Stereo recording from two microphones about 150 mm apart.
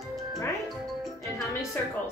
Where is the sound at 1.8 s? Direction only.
10° left (ahead or behind).